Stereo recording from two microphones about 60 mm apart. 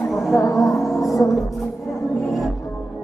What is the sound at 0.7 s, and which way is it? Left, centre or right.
Music, centre.